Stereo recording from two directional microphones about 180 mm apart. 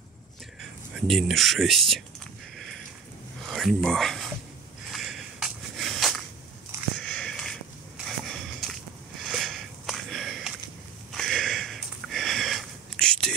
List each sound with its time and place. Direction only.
0.9 s speech: centre (ahead or behind)
3.4 s a sound: centre (ahead or behind)
7.0 s sniff: 5° left (ahead or behind)